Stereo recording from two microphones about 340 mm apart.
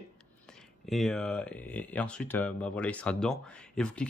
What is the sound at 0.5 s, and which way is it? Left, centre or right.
Speech, centre.